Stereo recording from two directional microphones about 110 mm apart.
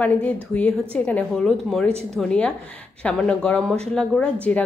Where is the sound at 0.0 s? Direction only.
15° left (ahead or behind).